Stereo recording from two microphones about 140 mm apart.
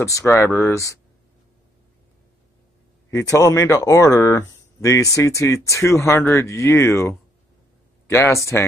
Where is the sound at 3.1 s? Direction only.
25° left (ahead or behind).